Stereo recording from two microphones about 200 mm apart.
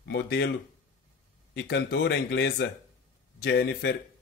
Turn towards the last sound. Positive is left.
turn(degrees=55)  # may be behind; listen again after turning